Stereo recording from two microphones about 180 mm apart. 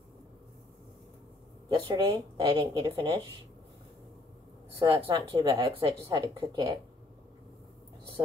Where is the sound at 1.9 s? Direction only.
20° right (ahead or behind).